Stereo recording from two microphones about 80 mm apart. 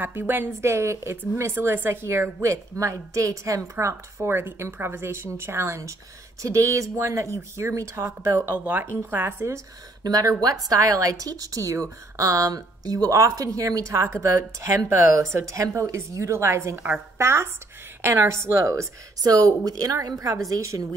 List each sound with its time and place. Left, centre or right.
0.0 s a woman's voice: right
10.0 s a woman's voice: right